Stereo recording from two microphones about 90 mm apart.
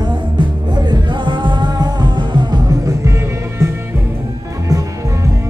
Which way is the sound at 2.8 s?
35° right (ahead or behind).